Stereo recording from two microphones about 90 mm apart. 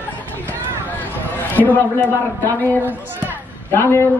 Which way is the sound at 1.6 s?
20° left (ahead or behind).